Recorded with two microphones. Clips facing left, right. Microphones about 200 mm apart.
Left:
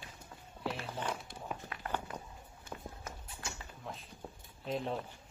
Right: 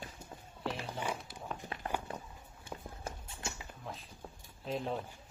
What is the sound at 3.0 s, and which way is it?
Run, 25° right (ahead or behind).